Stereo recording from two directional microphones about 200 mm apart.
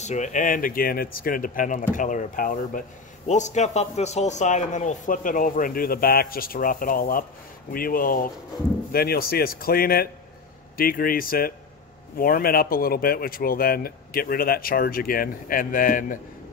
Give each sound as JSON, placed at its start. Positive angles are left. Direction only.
{"t": 0.0, "sound": "speech", "side_deg": 35}